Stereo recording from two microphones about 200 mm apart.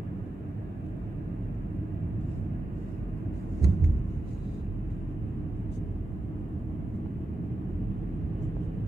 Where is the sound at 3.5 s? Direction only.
50° left (ahead or behind).